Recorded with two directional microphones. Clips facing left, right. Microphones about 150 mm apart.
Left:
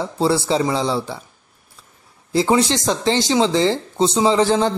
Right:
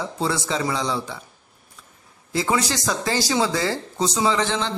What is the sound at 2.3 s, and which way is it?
A man's voice, 30° left (ahead or behind).